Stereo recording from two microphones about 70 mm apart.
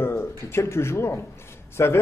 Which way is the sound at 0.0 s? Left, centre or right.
Left.